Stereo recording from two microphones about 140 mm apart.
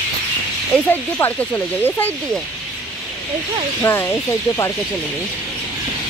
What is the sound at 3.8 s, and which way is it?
Speech, 15° left (ahead or behind).